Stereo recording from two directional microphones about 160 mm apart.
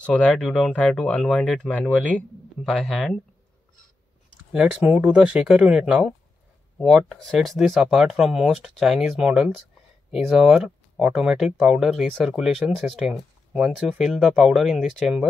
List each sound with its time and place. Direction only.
0.0 s speech: 5° left (ahead or behind)
4.5 s speech: 5° right (ahead or behind)